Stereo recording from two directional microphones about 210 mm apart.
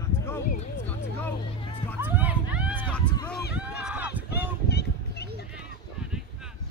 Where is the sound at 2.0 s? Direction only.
10° right (ahead or behind).